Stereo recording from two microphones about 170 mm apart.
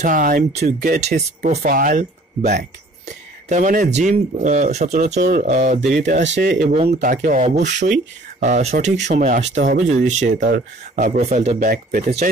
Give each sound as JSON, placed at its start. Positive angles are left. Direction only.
{"t": 0.0, "sound": "speech", "side_deg": -55}
{"t": 0.5, "sound": "speech", "side_deg": -40}
{"t": 0.7, "sound": "speech", "side_deg": -60}
{"t": 1.4, "sound": "speech", "side_deg": -50}
{"t": 6.2, "sound": "speech", "side_deg": -90}
{"t": 7.6, "sound": "speech", "side_deg": -90}
{"t": 8.4, "sound": "speech", "side_deg": -40}
{"t": 11.7, "sound": "speech", "side_deg": -60}